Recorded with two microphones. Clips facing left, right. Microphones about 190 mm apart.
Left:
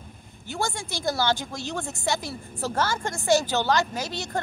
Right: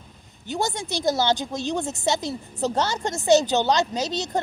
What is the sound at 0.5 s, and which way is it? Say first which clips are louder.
A woman's voice: right 4 dB; 20° right (ahead or behind).